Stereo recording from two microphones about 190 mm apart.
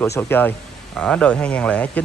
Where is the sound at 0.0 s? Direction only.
15° left (ahead or behind).